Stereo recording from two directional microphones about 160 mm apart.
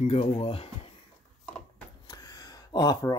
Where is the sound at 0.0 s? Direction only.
40° left (ahead or behind).